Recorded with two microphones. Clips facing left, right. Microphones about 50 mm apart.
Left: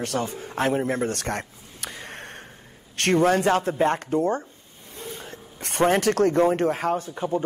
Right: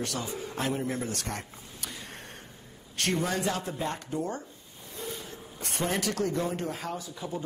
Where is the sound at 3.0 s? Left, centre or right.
Left.